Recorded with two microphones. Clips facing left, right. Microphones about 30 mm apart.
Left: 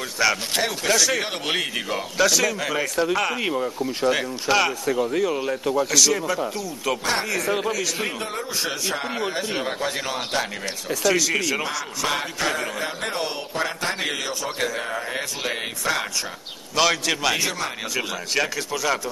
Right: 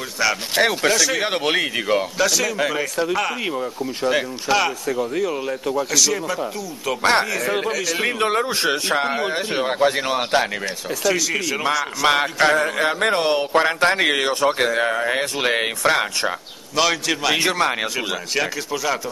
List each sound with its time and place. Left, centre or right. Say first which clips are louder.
0.2 s speech: right 3 dB; centre
2.1 s speech: even; centre
7.0 s speech: right 11 dB; right
7.4 s speech: right 2 dB; centre
8.2 s speech: right 8 dB; right
9.1 s speech: right 4 dB; centre
10.9 s speech: even; centre
12.1 s speech: right 9 dB; right
16.7 s speech: right 1 dB; centre
17.4 s speech: right 7 dB; right
18.3 s speech: left 1 dB; centre